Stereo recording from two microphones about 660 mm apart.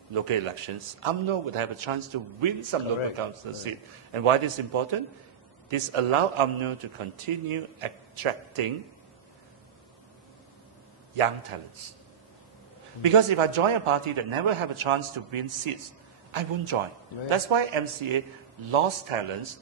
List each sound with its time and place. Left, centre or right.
0.1 s a man's voice: right
13.0 s a man's voice: right